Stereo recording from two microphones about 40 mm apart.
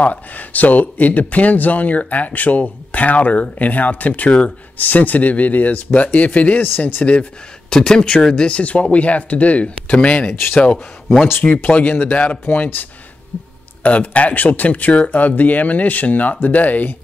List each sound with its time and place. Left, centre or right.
0.0 s speech: left
7.7 s speech: centre
10.3 s speech: left
11.4 s speech: left
12.4 s speech: left
13.8 s speech: left